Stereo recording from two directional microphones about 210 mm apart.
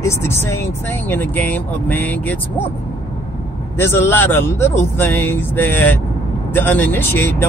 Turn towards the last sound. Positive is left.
turn(degrees=10)  # may be behind; listen again after turning